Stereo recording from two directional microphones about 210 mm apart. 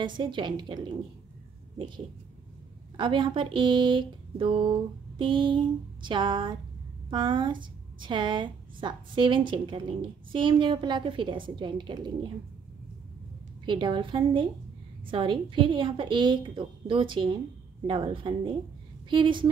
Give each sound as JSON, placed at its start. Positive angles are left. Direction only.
{"t": 0.2, "sound": "a woman's voice", "side_deg": -20}
{"t": 3.0, "sound": "a woman's voice", "side_deg": -25}
{"t": 13.7, "sound": "a woman's voice", "side_deg": -20}